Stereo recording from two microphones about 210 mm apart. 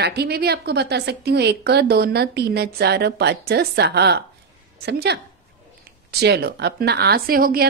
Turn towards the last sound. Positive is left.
turn(degrees=-45)  # may be behind; listen again after turning